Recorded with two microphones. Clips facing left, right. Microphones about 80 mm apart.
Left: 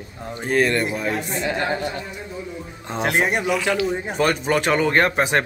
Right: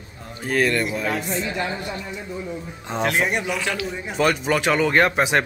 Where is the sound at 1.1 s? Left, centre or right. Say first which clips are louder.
Left 1 dB; left.